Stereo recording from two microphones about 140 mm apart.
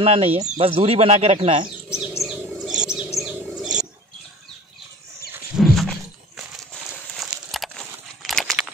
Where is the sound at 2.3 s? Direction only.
5° right (ahead or behind).